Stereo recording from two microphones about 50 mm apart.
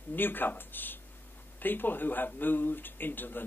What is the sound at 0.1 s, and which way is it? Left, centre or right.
A man's voice, left.